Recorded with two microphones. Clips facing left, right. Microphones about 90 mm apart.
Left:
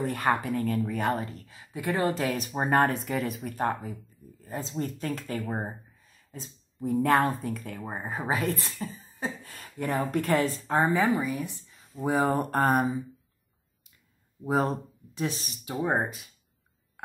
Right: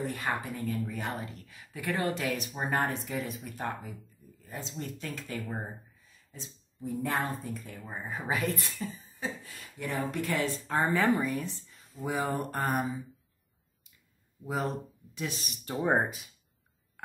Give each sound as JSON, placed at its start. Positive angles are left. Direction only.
{"t": 0.0, "sound": "speech", "side_deg": 55}
{"t": 1.5, "sound": "speech", "side_deg": 30}
{"t": 2.0, "sound": "speech", "side_deg": 40}
{"t": 7.8, "sound": "speech", "side_deg": 40}
{"t": 10.8, "sound": "speech", "side_deg": 20}
{"t": 11.1, "sound": "speech", "side_deg": 0}
{"t": 12.0, "sound": "speech", "side_deg": 40}
{"t": 14.4, "sound": "speech", "side_deg": 40}
{"t": 15.6, "sound": "speech", "side_deg": 0}